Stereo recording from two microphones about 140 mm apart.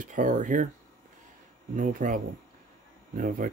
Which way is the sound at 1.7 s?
70° right (ahead or behind).